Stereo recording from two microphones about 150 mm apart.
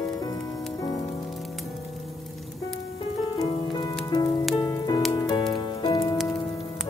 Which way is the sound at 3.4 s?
25° left (ahead or behind).